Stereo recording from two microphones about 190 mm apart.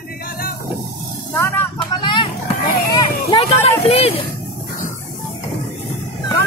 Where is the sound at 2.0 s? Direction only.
25° left (ahead or behind).